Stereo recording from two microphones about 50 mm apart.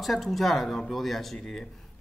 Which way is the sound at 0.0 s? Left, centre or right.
Centre.